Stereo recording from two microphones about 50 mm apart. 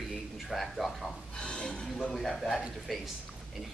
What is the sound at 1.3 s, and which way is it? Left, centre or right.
Speech, centre.